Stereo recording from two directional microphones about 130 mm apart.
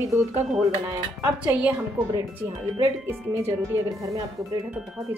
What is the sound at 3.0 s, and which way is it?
Speech, 20° right (ahead or behind).